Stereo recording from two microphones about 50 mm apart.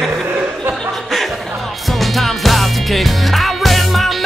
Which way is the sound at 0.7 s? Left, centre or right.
Centre.